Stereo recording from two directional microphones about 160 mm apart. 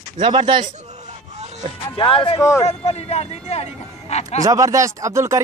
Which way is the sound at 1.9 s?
35° left (ahead or behind).